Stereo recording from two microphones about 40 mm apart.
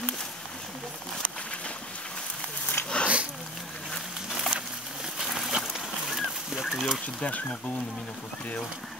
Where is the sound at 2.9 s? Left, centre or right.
Left.